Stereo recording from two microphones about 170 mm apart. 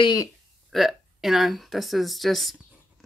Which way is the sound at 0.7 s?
Centre (ahead or behind).